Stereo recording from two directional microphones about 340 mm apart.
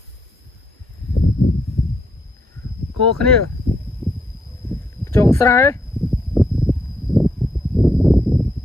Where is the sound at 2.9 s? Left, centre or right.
Left.